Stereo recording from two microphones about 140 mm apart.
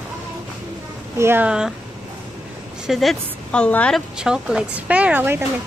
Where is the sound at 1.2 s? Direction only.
15° right (ahead or behind).